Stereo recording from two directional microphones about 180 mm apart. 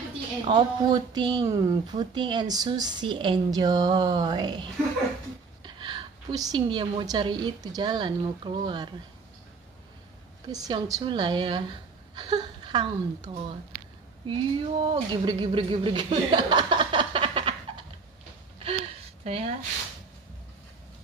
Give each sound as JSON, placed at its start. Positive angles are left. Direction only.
{"t": 0.5, "sound": "a woman's voice", "side_deg": -25}
{"t": 10.5, "sound": "speech", "side_deg": -20}
{"t": 18.6, "sound": "gasp", "side_deg": -35}